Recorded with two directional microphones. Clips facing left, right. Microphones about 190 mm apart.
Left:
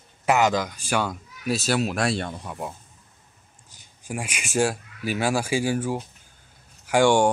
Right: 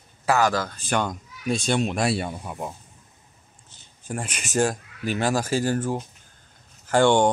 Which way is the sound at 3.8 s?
10° left (ahead or behind).